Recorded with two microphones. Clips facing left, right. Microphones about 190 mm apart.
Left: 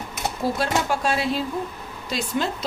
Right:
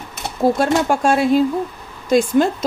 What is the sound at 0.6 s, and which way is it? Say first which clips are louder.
Speech: right 7 dB; 50° right (ahead or behind).